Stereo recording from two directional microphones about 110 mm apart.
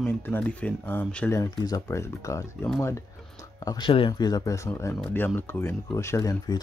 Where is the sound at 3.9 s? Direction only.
55° left (ahead or behind).